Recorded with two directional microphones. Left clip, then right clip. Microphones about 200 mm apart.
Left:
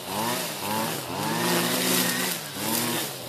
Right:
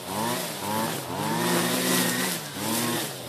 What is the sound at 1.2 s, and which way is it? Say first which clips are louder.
Chainsaw: even; 45° left (ahead or behind).